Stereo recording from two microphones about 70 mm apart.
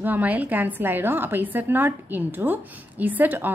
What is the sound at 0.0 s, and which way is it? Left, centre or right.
A woman's voice, right.